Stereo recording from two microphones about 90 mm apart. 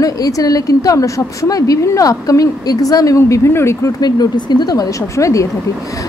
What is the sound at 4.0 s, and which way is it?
A woman's voice, 50° left (ahead or behind).